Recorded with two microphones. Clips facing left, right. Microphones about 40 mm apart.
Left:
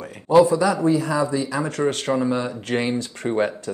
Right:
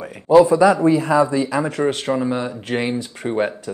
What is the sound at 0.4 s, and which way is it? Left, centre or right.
Speech, right.